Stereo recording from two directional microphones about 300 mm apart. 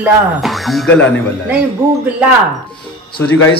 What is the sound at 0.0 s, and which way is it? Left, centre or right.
Speech, centre.